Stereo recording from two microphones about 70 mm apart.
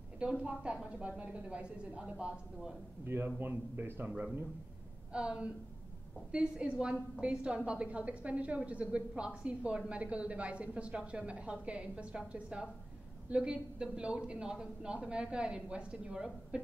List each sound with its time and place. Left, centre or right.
0.2 s a woman's voice: centre
3.3 s speech: right
5.1 s a woman's voice: centre